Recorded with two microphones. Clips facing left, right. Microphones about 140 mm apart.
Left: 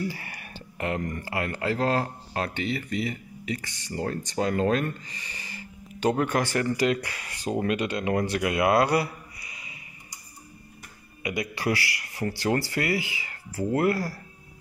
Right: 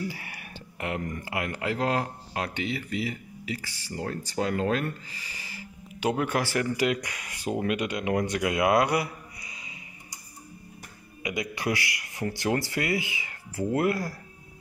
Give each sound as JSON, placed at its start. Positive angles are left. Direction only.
{"t": 0.1, "sound": "a man's voice", "side_deg": -10}
{"t": 11.2, "sound": "speech", "side_deg": -15}